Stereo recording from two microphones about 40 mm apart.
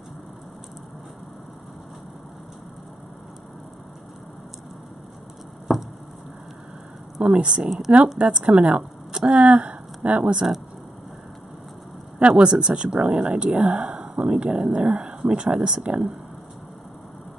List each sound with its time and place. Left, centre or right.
7.2 s speech: right
7.6 s speech: centre
8.2 s speech: right
12.2 s speech: right